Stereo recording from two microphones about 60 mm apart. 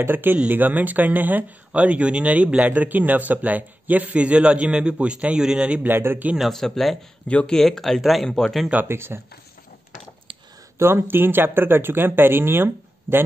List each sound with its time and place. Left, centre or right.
0.0 s speech: right; by 5.9 s centre
5.9 s speech: right
6.5 s speech: centre
7.2 s speech: left
7.5 s speech: centre
8.8 s speech: right
10.8 s speech: right